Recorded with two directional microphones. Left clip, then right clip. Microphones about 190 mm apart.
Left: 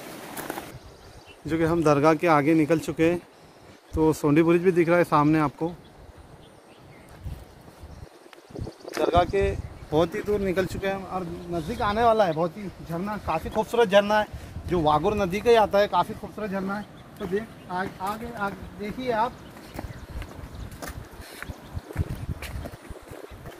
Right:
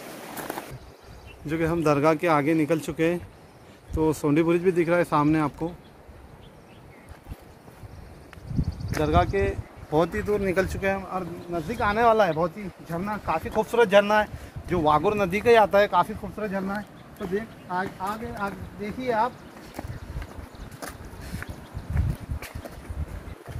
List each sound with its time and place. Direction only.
1.4 s a man's voice: 15° left (ahead or behind); by 5.7 s 45° left (ahead or behind)
9.1 s speech: 70° left (ahead or behind)
9.8 s speech: 25° left (ahead or behind)
10.2 s speech: centre (ahead or behind)
10.6 s speech: 10° right (ahead or behind)